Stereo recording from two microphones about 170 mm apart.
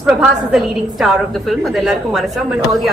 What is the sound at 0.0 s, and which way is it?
A woman's voice, 5° right (ahead or behind).